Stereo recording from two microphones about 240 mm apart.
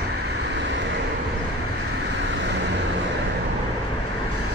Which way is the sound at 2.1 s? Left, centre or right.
Right.